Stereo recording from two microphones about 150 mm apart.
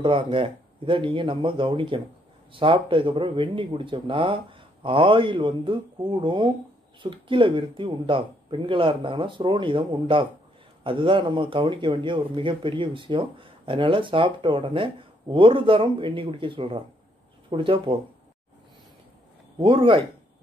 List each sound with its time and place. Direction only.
0.0 s a man's voice: 35° right (ahead or behind)
19.6 s a man's voice: 35° right (ahead or behind)